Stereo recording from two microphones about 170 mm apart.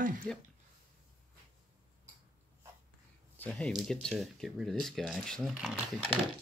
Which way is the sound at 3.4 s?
5° left (ahead or behind).